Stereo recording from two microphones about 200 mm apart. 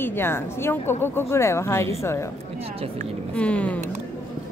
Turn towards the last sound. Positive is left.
turn(degrees=5)  # may be behind; listen again after turning